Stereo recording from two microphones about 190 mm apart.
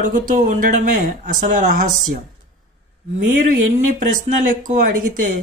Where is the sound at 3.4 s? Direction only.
45° right (ahead or behind).